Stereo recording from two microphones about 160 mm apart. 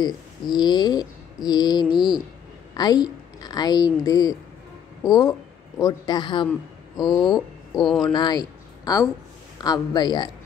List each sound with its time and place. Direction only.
0.0 s a woman's voice: 25° left (ahead or behind)
7.3 s speech: centre (ahead or behind)
8.1 s speech: 25° left (ahead or behind)